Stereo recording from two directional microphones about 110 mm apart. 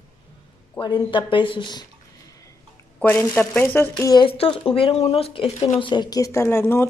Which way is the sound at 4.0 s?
40° left (ahead or behind).